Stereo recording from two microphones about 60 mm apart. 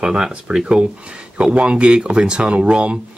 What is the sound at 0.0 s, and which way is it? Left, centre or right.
Speech, centre.